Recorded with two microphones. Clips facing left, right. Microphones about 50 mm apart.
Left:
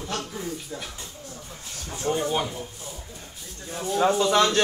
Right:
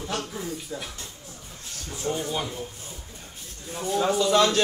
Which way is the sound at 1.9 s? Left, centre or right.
Left.